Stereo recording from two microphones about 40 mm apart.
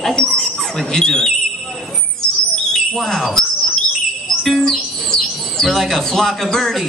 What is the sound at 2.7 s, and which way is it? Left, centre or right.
Bird, centre.